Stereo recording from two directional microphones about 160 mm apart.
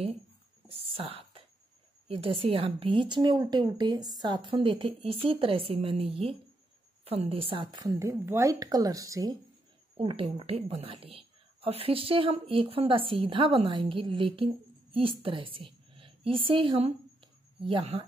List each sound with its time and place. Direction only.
0.7 s whispering: 35° right (ahead or behind)
2.0 s a woman's voice: 35° right (ahead or behind)
9.9 s a woman's voice: 35° right (ahead or behind)